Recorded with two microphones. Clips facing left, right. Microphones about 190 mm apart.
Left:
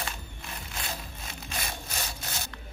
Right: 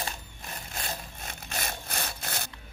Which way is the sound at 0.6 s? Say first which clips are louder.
Right 1 dB; 45° right (ahead or behind).